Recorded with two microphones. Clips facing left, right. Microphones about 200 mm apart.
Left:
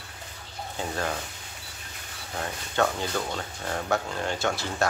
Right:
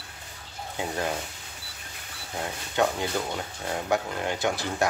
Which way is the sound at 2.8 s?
15° right (ahead or behind).